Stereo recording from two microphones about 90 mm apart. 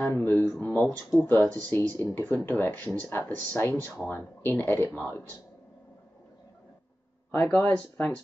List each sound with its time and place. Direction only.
0.0 s speech: 20° left (ahead or behind)
7.2 s speech: 20° left (ahead or behind)